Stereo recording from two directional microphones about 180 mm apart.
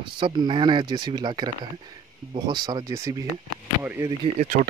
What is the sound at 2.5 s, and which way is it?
Speech, 25° right (ahead or behind).